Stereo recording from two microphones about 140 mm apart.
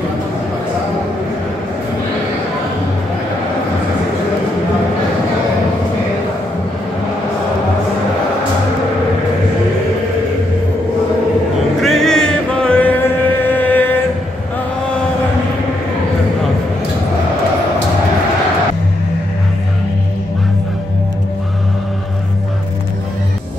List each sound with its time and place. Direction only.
11.8 s music: centre (ahead or behind)
13.6 s chant: 10° left (ahead or behind)